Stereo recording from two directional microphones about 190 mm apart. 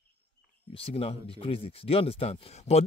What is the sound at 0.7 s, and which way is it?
Speech, 30° left (ahead or behind).